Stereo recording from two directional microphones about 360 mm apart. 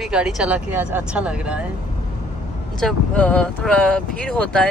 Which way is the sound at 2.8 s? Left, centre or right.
Centre.